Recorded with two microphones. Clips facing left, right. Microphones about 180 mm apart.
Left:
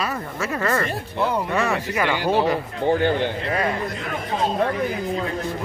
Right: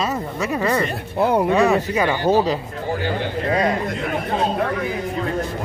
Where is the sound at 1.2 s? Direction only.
55° right (ahead or behind).